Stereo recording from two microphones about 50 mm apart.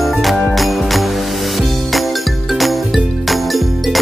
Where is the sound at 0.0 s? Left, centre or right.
Centre.